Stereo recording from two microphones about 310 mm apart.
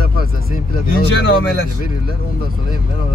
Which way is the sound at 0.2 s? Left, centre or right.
Left.